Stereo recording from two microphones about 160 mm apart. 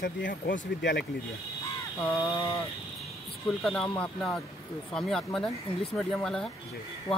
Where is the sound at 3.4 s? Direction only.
Centre (ahead or behind).